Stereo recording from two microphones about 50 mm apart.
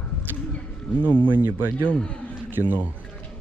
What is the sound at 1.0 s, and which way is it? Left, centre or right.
Speech, right.